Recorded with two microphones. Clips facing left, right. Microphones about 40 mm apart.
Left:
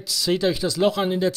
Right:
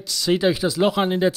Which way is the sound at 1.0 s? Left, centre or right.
Right.